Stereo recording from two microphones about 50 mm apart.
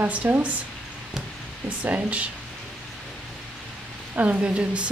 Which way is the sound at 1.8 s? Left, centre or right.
Right.